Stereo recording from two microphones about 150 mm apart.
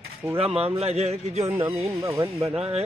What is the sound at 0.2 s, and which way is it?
Speech, 10° right (ahead or behind).